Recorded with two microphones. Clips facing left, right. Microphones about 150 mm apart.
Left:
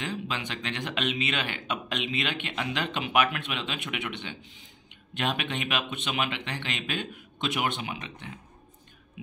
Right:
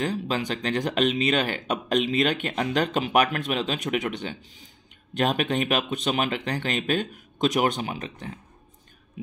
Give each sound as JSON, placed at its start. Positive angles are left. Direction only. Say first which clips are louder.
{"t": 0.0, "sound": "speech", "louder": "right 7 dB", "side_deg": -40}